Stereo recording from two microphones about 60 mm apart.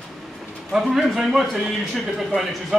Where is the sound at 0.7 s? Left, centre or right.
Centre.